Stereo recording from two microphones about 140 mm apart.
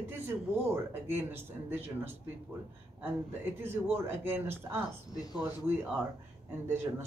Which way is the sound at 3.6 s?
15° right (ahead or behind).